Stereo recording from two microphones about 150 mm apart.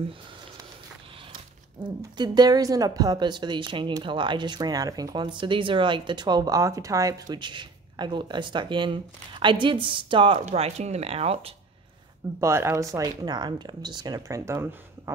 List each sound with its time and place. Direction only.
2.1 s speech: 30° right (ahead or behind)
12.4 s speech: 15° right (ahead or behind)